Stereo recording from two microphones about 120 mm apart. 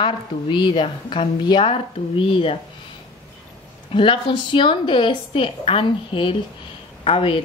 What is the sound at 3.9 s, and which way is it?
Speech, 45° left (ahead or behind).